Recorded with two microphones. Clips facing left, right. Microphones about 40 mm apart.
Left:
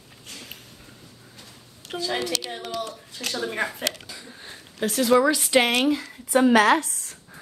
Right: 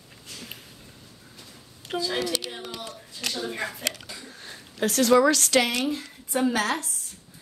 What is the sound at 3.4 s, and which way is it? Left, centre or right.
Speech, left.